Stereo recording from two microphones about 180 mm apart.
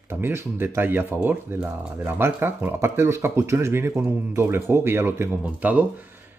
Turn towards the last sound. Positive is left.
turn(degrees=-10)  # may be behind; listen again after turning